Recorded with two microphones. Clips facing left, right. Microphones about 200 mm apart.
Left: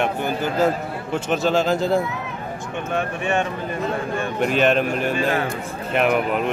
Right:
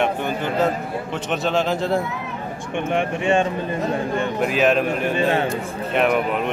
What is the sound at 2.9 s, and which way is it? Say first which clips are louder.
Speech: right 3 dB; 25° right (ahead or behind).